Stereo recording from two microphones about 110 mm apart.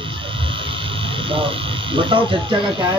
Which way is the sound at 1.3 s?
55° right (ahead or behind).